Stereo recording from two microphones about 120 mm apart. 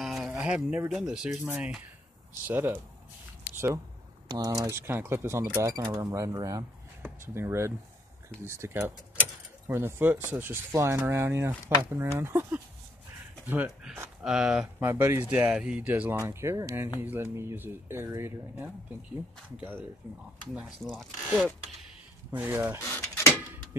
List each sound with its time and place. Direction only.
0.0 s a sound: centre (ahead or behind)
0.3 s speech: 10° right (ahead or behind)
4.3 s speech: 30° right (ahead or behind); by 14.9 s 10° right (ahead or behind)
14.9 s speech: 20° right (ahead or behind)
20.8 s speech: 5° left (ahead or behind)
22.3 s speech: 15° right (ahead or behind)
22.9 s drawer open or close: 20° left (ahead or behind)